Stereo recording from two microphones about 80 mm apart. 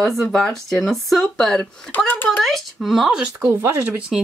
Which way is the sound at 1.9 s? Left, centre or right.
Left.